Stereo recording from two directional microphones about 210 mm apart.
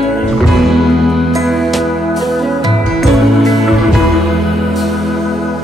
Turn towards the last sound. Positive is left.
turn(degrees=0)  # may be behind; listen again after turning